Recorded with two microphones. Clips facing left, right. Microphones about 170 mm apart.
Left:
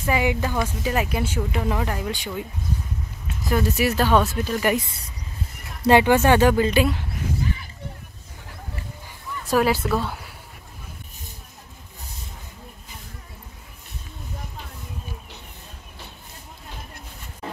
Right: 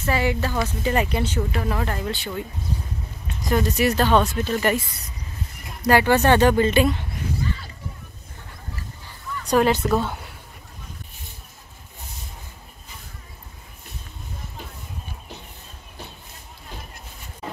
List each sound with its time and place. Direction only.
0.0 s speech: 15° left (ahead or behind)
5.8 s speech: 20° left (ahead or behind)
6.1 s speech: 10° left (ahead or behind)
9.5 s speech: 5° left (ahead or behind)